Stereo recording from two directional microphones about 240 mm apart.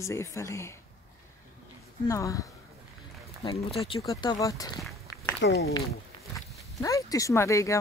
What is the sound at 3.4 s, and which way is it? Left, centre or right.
Speech, left.